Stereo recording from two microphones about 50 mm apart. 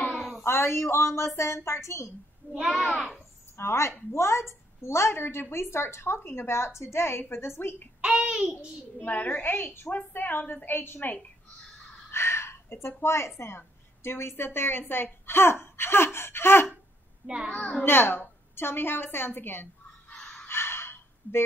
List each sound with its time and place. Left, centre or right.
0.4 s a woman's voice: left
2.6 s a child's voice: centre
3.5 s a woman's voice: left
8.2 s a sound: right
9.0 s a woman's voice: left
12.1 s a woman's voice: left
17.6 s a child's voice: left
17.8 s a woman's voice: left
20.4 s a sound: left